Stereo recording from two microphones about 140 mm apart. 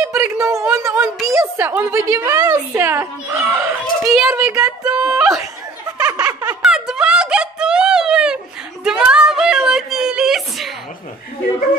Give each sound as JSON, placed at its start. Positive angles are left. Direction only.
{"t": 0.0, "sound": "a woman's voice", "side_deg": -20}
{"t": 4.0, "sound": "a child's voice", "side_deg": 0}
{"t": 4.3, "sound": "a woman's voice", "side_deg": -15}
{"t": 6.0, "sound": "snicker", "side_deg": -30}
{"t": 6.6, "sound": "a sound", "side_deg": -5}